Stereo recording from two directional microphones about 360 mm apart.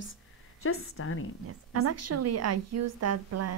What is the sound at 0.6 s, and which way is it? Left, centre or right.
Speech, left.